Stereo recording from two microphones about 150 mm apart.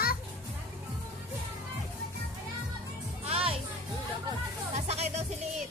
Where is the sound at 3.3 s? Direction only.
40° right (ahead or behind).